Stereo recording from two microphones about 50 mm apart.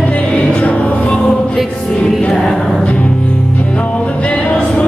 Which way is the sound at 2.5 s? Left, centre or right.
Centre.